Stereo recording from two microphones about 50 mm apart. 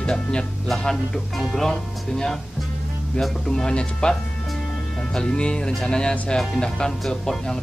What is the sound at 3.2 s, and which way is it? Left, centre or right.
Speech, centre.